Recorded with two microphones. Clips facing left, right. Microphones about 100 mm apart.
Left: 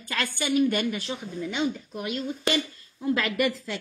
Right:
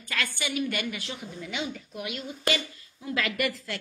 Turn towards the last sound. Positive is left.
turn(degrees=30)  # may be behind; listen again after turning